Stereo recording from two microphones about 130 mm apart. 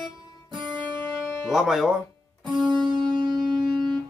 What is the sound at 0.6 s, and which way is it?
Music, 35° right (ahead or behind).